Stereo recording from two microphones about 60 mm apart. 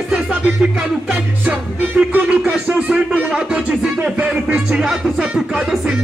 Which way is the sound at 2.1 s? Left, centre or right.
Right.